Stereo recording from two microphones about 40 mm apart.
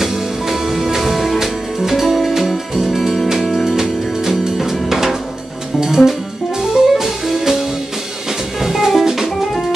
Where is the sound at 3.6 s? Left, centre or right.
Centre.